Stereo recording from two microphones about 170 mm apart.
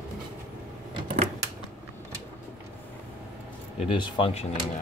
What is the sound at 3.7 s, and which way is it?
Speech, 30° left (ahead or behind).